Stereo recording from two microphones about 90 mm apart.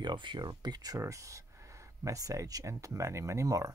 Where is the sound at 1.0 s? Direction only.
35° right (ahead or behind).